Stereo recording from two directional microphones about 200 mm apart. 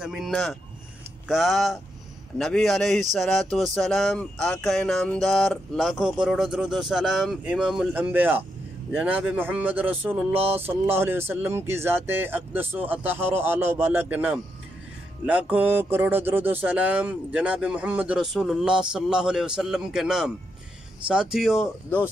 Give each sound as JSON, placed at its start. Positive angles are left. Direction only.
{"t": 0.0, "sound": "speech", "side_deg": 0}